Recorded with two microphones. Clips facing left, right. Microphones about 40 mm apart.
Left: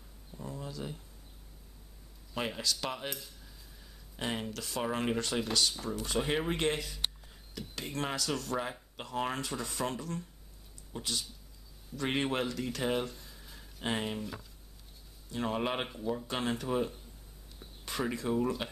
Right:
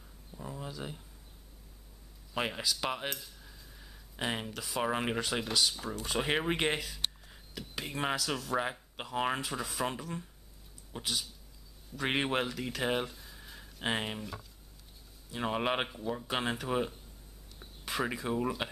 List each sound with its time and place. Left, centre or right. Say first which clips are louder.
0.4 s a sound: even; centre
2.3 s speech: right 1 dB; right
3.1 s cutlery: right 2 dB; centre
3.4 s speech: right 2 dB; centre
6.0 s speech: right 1 dB; centre
7.2 s a sound: even; centre
8.2 s speech: right 1 dB; centre
10.9 s speech: right 1 dB; right; by 13.4 s centre
13.4 s a sound: right 2 dB; centre
15.3 s speech: right 1 dB; centre